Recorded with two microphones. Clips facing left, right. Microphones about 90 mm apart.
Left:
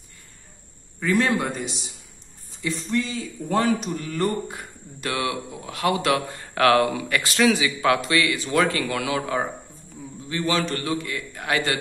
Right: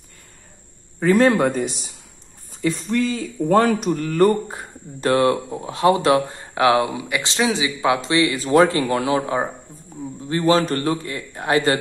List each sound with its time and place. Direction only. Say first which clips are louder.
0.9 s speech: right 6 dB; 40° right (ahead or behind)
4.5 s a man's voice: right 3 dB; 35° right (ahead or behind)